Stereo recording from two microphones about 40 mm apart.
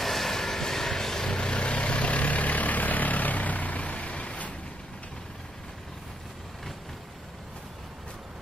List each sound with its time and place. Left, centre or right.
0.0 s vehicle: centre; by 4.6 s left